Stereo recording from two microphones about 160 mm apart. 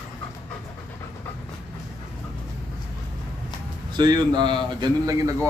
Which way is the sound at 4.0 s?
25° right (ahead or behind).